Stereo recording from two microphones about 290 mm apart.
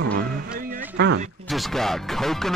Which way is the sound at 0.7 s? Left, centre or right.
Right.